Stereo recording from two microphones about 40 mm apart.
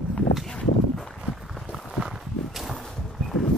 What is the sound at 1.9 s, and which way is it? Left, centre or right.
Walk, centre.